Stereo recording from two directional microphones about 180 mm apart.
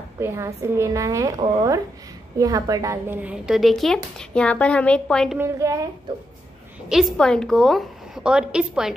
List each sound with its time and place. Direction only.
0.2 s a woman's voice: 15° right (ahead or behind); by 5.4 s 5° left (ahead or behind)
5.4 s a woman's voice: 15° right (ahead or behind)
6.9 s a woman's voice: centre (ahead or behind)